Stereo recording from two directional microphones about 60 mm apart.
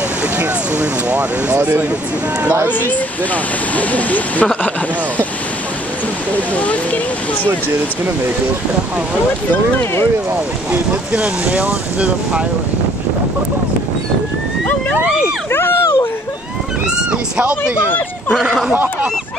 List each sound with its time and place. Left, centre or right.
0.4 s speech: right
2.7 s speech: left
6.5 s speech: left
10.7 s speech: centre
15.5 s a sound: left
16.8 s a sound: centre
18.3 s speech: centre
18.7 s speech: right